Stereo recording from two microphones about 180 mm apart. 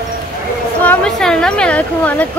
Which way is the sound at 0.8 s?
5° left (ahead or behind).